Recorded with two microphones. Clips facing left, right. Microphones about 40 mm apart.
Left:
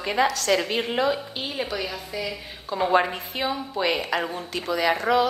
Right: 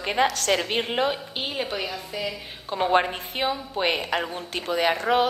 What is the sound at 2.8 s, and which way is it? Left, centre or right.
A man's voice, right.